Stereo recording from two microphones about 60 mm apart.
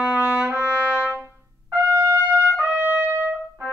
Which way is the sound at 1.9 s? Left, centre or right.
Right.